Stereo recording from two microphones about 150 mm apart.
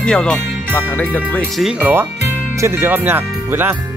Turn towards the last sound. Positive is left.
turn(degrees=-15)  # may be behind; listen again after turning